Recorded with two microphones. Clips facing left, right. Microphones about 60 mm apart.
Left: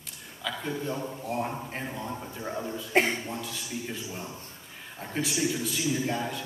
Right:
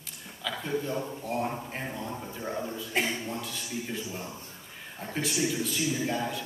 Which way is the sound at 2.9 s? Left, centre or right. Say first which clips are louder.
Left 6 dB; left.